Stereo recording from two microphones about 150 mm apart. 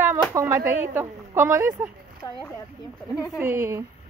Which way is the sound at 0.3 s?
20° right (ahead or behind).